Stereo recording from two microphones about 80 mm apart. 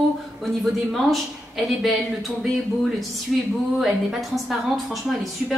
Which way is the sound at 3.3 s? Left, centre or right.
Centre.